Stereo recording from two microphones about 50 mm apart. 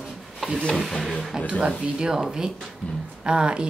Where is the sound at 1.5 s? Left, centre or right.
Centre.